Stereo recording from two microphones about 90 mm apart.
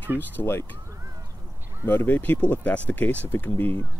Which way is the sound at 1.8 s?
25° left (ahead or behind).